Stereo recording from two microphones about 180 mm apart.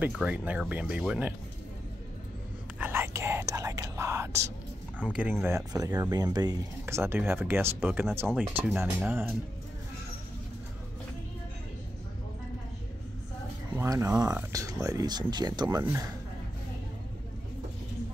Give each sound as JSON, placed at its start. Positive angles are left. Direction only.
{"t": 0.0, "sound": "speech", "side_deg": -5}
{"t": 2.8, "sound": "whispering", "side_deg": -10}
{"t": 4.9, "sound": "speech", "side_deg": -5}
{"t": 13.7, "sound": "speech", "side_deg": -15}
{"t": 15.8, "sound": "speech", "side_deg": -15}